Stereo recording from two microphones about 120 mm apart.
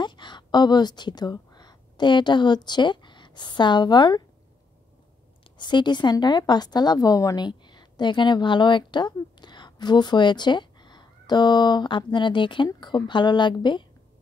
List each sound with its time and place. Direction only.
0.0 s a woman's voice: 40° left (ahead or behind)
5.6 s a woman's voice: 40° left (ahead or behind)